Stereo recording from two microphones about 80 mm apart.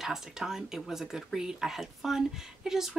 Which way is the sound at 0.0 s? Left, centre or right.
Centre.